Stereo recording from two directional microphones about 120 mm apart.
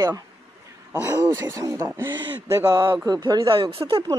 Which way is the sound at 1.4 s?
25° right (ahead or behind).